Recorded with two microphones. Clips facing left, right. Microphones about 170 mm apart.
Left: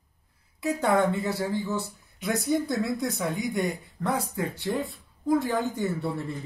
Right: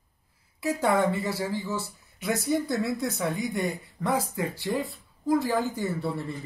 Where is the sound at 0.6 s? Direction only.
Centre (ahead or behind).